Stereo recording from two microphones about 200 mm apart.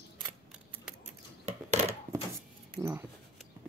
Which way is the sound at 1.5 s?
35° right (ahead or behind).